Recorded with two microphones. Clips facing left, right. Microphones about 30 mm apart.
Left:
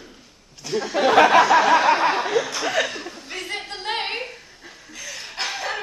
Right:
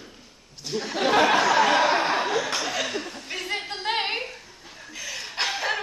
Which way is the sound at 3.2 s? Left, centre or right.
Centre.